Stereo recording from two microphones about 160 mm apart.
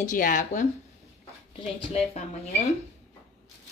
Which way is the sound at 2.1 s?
40° left (ahead or behind).